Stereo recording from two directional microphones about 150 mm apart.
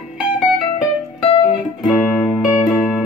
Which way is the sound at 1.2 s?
35° left (ahead or behind).